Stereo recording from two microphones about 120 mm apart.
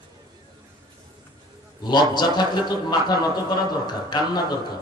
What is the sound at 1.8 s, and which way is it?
A man's voice, 35° left (ahead or behind).